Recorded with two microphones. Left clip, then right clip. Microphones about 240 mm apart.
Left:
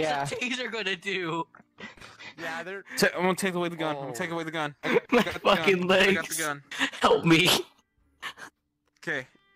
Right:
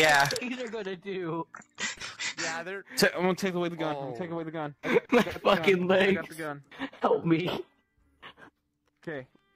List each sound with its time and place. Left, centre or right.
0.0 s speech: right
0.4 s a sound: left
0.7 s speech: left
1.5 s speech: right
2.0 s a sound: right
2.4 s speech: centre
3.3 s speech: centre
4.2 s a man's voice: left
4.7 s speech: centre
5.9 s a man's voice: left
6.3 s speech: left
8.2 s dog: left
9.0 s speech: left